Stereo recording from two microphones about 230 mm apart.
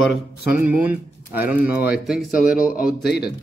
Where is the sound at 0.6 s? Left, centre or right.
Centre.